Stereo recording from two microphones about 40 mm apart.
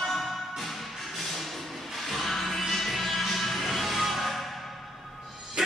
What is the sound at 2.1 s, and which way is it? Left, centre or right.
Music, centre.